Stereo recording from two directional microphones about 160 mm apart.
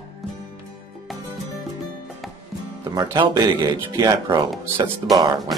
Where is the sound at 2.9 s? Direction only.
25° right (ahead or behind).